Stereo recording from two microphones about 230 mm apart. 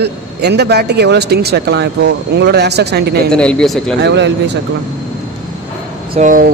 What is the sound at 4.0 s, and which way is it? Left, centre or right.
Speech, right.